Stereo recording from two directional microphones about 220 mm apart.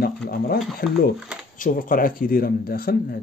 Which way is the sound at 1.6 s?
40° left (ahead or behind).